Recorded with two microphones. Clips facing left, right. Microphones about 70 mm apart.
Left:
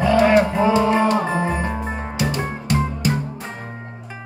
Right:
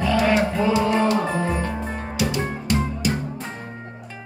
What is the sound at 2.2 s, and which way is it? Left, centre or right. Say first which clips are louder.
Music: even; left.